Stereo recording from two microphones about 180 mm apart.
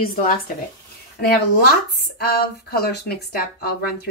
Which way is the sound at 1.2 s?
60° left (ahead or behind).